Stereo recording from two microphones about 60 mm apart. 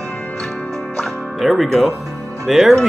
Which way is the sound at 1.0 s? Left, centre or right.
Centre.